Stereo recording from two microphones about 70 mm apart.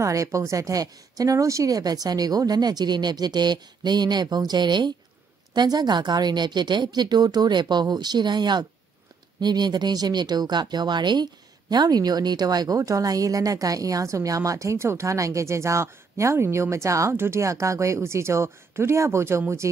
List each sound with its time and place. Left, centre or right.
0.0 s a woman's voice: right